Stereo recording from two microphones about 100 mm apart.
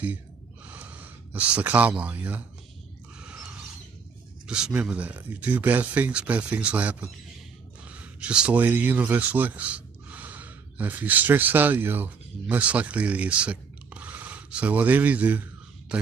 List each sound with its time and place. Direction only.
0.7 s speech: 15° right (ahead or behind)
3.2 s a sound: 10° right (ahead or behind)
4.5 s speech: 10° right (ahead or behind)